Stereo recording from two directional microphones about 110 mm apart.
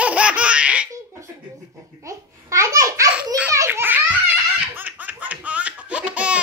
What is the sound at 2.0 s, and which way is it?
Babbling, 30° right (ahead or behind).